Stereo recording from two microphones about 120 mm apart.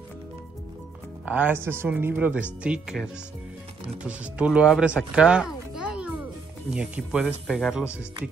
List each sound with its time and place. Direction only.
1.2 s speech: 10° right (ahead or behind)
5.1 s a sound: 5° right (ahead or behind)
6.7 s speech: 5° right (ahead or behind)